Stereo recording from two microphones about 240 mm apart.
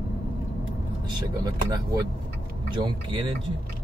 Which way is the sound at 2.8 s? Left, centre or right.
Centre.